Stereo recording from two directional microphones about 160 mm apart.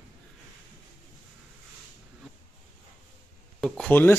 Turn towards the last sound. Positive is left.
turn(degrees=10)  # may be behind; listen again after turning